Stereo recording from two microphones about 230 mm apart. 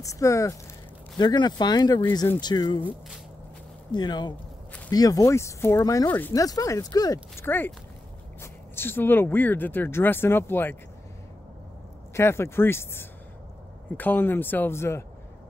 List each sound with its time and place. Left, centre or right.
0.0 s speech: centre
2.8 s speech: centre
3.9 s speech: centre
12.1 s speech: centre